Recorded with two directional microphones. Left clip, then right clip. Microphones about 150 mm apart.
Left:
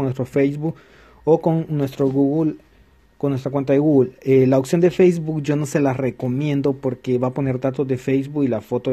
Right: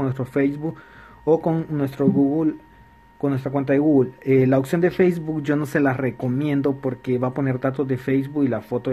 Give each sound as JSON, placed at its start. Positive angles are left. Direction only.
{"t": 0.0, "sound": "speech", "side_deg": 35}